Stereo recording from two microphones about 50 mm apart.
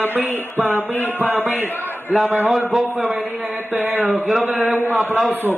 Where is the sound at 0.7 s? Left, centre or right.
Left.